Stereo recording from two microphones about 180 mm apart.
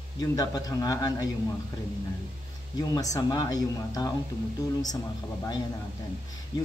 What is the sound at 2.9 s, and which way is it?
Speech, 20° left (ahead or behind).